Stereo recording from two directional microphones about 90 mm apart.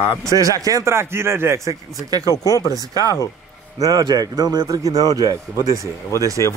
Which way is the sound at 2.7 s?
40° right (ahead or behind).